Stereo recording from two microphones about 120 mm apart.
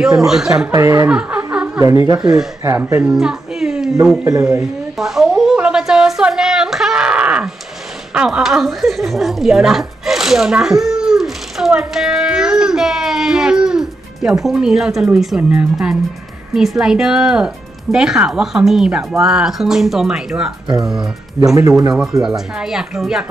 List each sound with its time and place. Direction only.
0.0 s speech: 5° right (ahead or behind)
0.7 s speech: 25° right (ahead or behind)
1.0 s a sound: 10° right (ahead or behind)
1.8 s speech: 25° right (ahead or behind)
2.1 s speech: 5° right (ahead or behind)
2.6 s a child's voice: 20° right (ahead or behind); by 3.9 s 5° right (ahead or behind)
4.9 s a sound: 5° right (ahead or behind)
8.1 s a woman's voice: 5° right (ahead or behind)